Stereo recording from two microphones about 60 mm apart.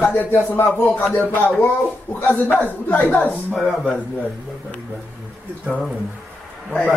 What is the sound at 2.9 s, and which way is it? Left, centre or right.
Speech, left.